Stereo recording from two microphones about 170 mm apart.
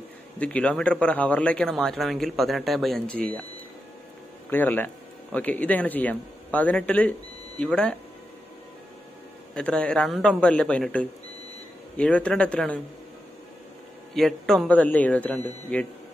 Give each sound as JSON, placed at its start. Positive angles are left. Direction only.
{"t": 0.4, "sound": "speech", "side_deg": 5}
{"t": 4.5, "sound": "speech", "side_deg": 10}
{"t": 9.5, "sound": "speech", "side_deg": 5}
{"t": 14.1, "sound": "speech", "side_deg": 0}